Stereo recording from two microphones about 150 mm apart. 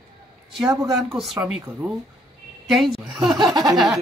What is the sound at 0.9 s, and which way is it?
Speech, centre (ahead or behind).